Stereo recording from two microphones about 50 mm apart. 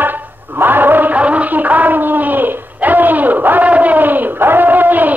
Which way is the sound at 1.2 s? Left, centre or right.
Right.